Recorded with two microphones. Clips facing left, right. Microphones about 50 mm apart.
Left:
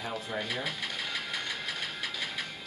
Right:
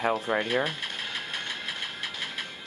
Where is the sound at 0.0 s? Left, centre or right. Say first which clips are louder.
Right 9 dB; right.